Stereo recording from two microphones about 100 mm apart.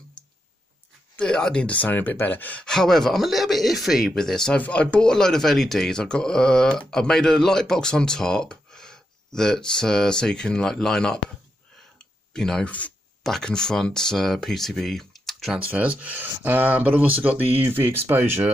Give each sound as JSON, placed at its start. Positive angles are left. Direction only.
{"t": 1.2, "sound": "speech", "side_deg": 10}
{"t": 15.7, "sound": "speech", "side_deg": -15}